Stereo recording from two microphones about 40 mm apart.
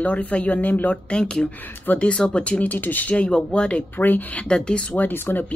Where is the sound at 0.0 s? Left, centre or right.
Left.